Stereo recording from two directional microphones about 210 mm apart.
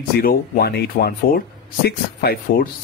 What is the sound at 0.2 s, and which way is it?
Speech, 45° left (ahead or behind).